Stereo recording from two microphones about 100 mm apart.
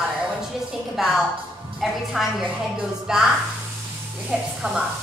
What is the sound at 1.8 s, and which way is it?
A woman's voice, 5° right (ahead or behind).